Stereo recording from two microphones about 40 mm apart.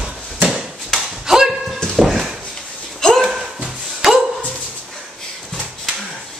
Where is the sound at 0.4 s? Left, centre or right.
Centre.